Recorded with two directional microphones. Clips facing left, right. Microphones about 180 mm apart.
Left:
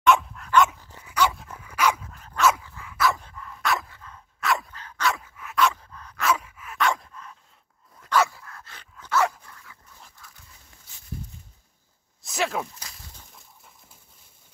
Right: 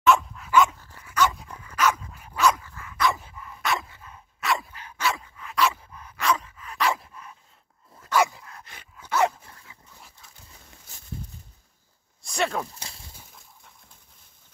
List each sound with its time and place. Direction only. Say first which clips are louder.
0.0 s dog: even; centre (ahead or behind)
0.7 s dog: left 1 dB; 15° left (ahead or behind)
1.3 s dog: even; 5° left (ahead or behind)
2.1 s dog: left 1 dB; 10° right (ahead or behind)
2.4 s dog: even; 10° left (ahead or behind)
3.2 s dog: left 1 dB; 5° right (ahead or behind)
5.8 s dog: even; 15° right (ahead or behind)
6.1 s dog: even; 5° left (ahead or behind); by 9.8 s 25° right (ahead or behind)
12.2 s a sound: even; centre (ahead or behind)